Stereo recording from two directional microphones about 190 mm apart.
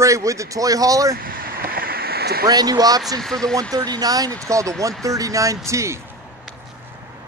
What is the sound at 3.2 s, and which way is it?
Speech, 5° left (ahead or behind).